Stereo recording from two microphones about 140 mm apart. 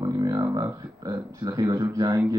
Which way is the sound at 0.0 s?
25° right (ahead or behind).